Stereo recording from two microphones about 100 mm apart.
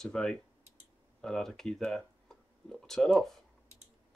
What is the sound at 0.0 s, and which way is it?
Speech, 5° left (ahead or behind).